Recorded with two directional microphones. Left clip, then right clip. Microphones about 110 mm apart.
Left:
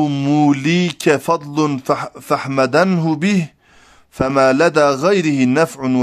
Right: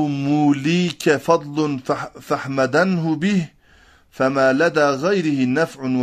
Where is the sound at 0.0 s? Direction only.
40° left (ahead or behind).